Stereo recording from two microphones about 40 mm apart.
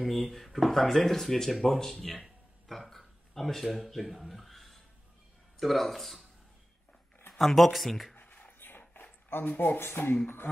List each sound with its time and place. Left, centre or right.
0.0 s speech: centre
2.9 s a sound: centre
5.6 s speech: centre
7.3 s speech: centre
8.2 s a sound: left
8.6 s dog: left
9.5 s speech: left
9.8 s speech: left